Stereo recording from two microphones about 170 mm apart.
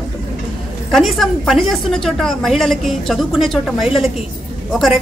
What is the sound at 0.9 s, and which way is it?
A woman's voice, centre (ahead or behind).